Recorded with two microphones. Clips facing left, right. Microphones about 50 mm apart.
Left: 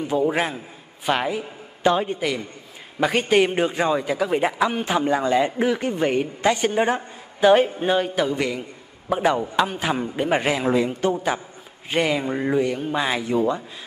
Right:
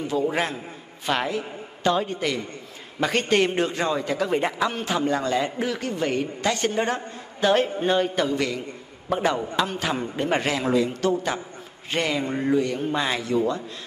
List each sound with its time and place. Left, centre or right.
0.0 s a man's voice: left